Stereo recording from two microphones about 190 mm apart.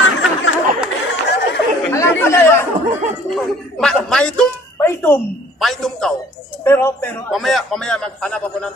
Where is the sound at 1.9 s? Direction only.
15° left (ahead or behind).